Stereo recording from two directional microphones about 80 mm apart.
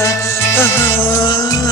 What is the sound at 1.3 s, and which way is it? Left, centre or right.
Music, left.